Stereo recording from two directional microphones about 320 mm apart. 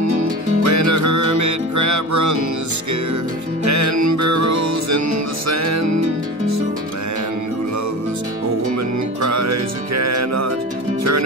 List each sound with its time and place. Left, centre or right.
0.0 s music: right
3.6 s music: right
9.2 s music: right